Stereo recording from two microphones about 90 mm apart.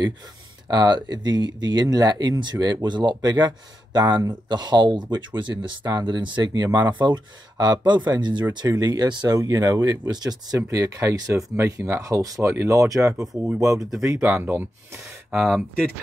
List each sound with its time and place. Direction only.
0.7 s speech: 55° right (ahead or behind)
8.5 s speech: 45° right (ahead or behind)
13.7 s speech: centre (ahead or behind)
14.3 s speech: 25° right (ahead or behind)
15.3 s speech: 5° right (ahead or behind)